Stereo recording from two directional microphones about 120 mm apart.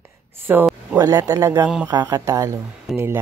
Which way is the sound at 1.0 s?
30° right (ahead or behind).